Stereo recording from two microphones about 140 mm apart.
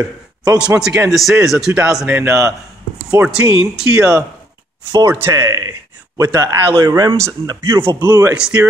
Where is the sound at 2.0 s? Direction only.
15° right (ahead or behind).